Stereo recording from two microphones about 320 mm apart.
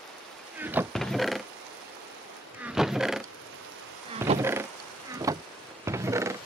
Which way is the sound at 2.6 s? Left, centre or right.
Centre.